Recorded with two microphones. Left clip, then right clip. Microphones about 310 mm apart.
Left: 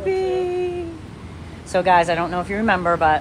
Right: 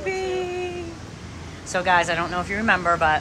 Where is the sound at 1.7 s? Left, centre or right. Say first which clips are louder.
Left 4 dB; centre.